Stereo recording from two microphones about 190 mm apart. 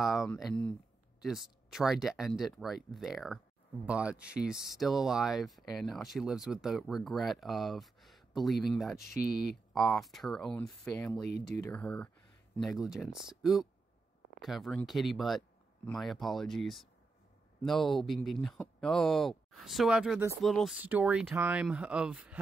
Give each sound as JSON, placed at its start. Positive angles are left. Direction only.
{"t": 0.0, "sound": "speech", "side_deg": 0}
{"t": 9.2, "sound": "speech", "side_deg": 55}
{"t": 9.8, "sound": "speech", "side_deg": 0}